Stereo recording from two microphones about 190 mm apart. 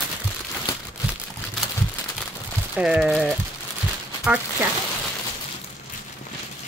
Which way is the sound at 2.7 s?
5° right (ahead or behind).